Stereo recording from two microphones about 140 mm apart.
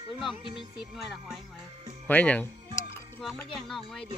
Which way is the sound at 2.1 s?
10° left (ahead or behind).